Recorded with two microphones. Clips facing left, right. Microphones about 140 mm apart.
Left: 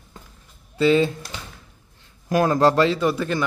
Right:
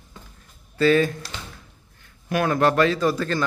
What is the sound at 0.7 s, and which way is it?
Speech, 20° left (ahead or behind).